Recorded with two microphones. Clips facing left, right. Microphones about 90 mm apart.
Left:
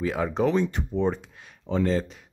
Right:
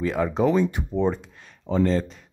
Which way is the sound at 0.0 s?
Centre (ahead or behind).